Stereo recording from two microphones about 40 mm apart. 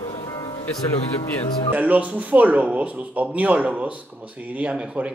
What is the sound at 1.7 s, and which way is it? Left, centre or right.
Speech, right.